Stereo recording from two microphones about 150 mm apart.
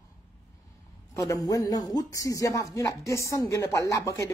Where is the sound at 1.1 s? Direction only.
20° left (ahead or behind).